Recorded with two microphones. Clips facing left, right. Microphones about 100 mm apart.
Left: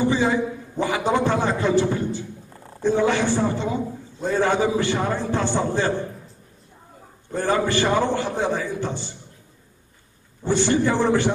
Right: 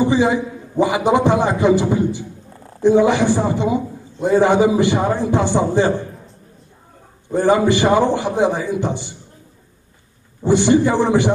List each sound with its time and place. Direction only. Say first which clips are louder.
0.0 s a man's voice: right 4 dB; 15° right (ahead or behind)
7.2 s a man's voice: right 7 dB; 15° right (ahead or behind)
10.4 s a man's voice: right 6 dB; 15° right (ahead or behind)